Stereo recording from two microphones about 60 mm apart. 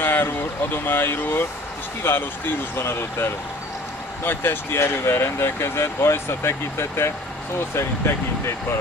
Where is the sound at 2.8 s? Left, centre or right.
Left.